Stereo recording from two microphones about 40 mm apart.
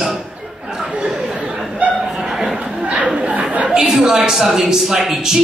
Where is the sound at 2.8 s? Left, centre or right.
Right.